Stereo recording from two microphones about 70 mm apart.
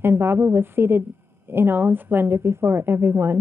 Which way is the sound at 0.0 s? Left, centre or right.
Right.